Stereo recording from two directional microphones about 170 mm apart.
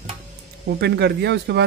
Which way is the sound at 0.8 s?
80° right.